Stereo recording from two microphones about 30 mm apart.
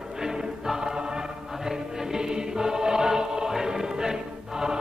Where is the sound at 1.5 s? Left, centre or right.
Centre.